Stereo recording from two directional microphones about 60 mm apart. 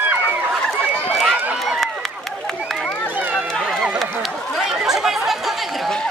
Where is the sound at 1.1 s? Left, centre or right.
Centre.